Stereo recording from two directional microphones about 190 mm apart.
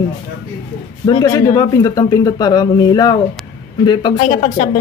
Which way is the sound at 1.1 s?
20° left (ahead or behind).